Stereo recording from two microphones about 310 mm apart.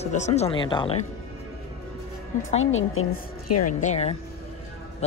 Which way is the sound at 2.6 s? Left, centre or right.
Left.